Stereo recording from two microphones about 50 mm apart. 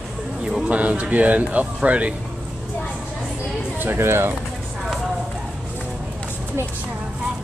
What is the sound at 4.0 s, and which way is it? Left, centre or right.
Speech, right.